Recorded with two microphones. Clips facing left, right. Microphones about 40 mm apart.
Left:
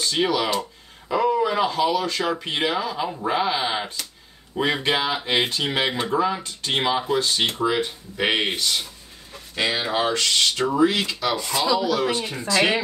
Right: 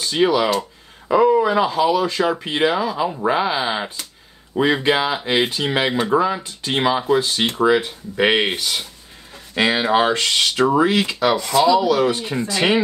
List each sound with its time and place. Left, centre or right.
0.0 s speech: centre
9.6 s speech: right
11.6 s speech: centre